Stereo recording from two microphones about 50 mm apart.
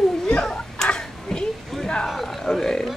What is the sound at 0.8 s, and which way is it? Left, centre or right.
Tick-tock, centre.